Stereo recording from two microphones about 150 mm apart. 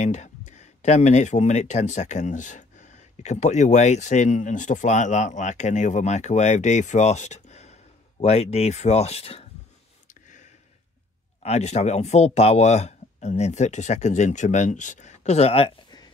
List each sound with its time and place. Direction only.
0.0 s speech: 50° left (ahead or behind)
10.0 s a sound: 55° left (ahead or behind)
11.4 s speech: 45° left (ahead or behind)